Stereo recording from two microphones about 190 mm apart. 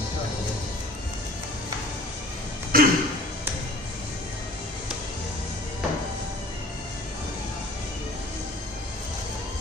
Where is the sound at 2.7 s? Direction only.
50° right (ahead or behind).